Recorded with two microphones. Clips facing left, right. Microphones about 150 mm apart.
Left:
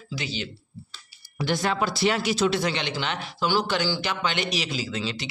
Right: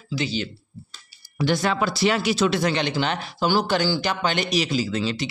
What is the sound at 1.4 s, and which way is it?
Speech, 90° right.